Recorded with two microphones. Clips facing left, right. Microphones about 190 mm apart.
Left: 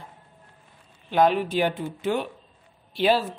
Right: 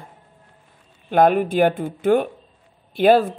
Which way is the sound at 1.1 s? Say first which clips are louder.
Right 5 dB; 50° right (ahead or behind).